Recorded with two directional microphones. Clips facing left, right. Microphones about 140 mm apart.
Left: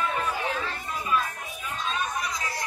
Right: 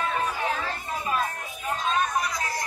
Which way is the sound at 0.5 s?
40° right (ahead or behind).